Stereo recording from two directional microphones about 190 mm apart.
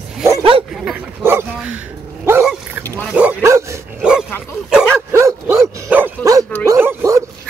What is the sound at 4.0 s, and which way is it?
Dog, 5° right (ahead or behind).